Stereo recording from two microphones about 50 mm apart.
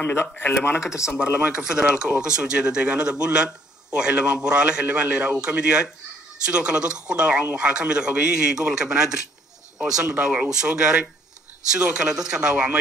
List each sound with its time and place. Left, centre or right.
0.0 s speech: left
1.2 s a man's voice: centre
10.2 s a man's voice: right